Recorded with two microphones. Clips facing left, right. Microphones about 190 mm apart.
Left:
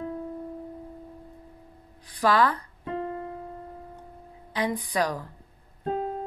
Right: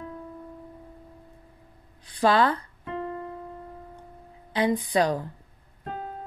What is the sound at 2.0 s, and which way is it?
Speech, 25° right (ahead or behind).